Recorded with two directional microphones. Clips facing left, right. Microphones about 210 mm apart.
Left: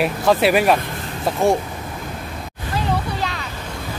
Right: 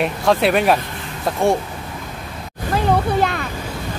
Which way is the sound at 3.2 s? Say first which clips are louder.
Right 7 dB; 55° right (ahead or behind).